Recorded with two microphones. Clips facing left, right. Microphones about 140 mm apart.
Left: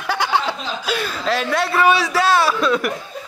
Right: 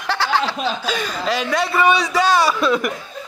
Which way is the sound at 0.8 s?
5° left (ahead or behind).